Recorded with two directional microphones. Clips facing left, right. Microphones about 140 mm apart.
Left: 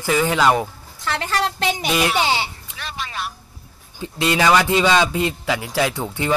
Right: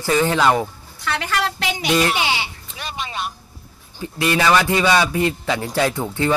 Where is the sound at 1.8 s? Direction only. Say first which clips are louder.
Right 4 dB; 10° left (ahead or behind).